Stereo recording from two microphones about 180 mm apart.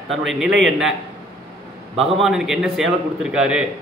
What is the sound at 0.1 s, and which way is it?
Speech, centre (ahead or behind).